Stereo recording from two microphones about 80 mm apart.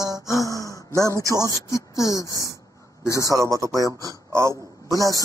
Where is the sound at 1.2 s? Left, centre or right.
Right.